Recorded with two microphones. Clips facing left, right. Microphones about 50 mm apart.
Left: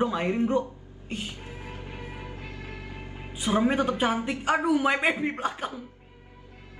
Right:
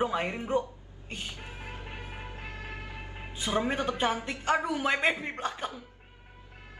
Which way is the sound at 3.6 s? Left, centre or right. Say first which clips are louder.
Left 6 dB; centre.